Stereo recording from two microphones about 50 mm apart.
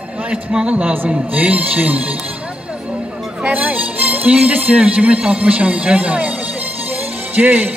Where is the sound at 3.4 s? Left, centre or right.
Right.